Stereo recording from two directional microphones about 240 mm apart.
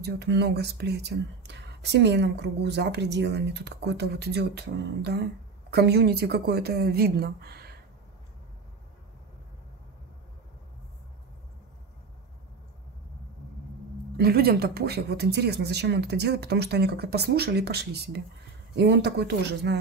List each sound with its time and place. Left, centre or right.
0.0 s speech: right
14.1 s speech: right